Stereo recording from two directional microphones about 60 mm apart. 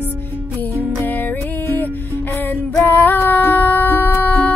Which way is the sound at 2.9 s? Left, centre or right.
Left.